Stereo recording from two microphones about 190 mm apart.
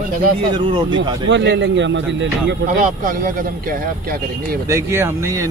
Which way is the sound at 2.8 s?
45° right (ahead or behind).